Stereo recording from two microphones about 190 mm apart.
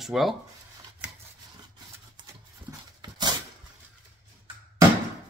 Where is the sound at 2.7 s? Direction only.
20° right (ahead or behind).